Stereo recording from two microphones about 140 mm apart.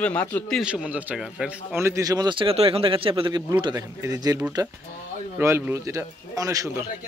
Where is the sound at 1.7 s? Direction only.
20° right (ahead or behind); by 3.4 s 40° right (ahead or behind).